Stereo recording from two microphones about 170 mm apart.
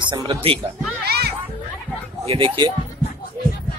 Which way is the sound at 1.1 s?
70° right (ahead or behind).